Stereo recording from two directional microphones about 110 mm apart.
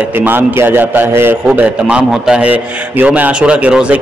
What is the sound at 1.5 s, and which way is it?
A man's voice, 10° right (ahead or behind).